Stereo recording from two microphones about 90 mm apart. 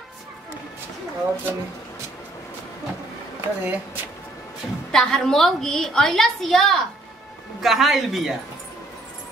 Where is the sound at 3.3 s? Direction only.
20° right (ahead or behind).